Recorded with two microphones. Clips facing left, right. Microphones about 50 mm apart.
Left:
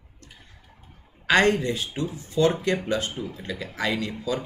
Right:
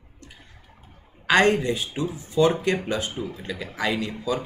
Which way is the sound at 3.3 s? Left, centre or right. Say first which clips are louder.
Right 1 dB; centre.